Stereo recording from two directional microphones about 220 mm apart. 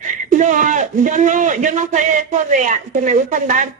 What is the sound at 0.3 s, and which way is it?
A man's voice, 35° right (ahead or behind).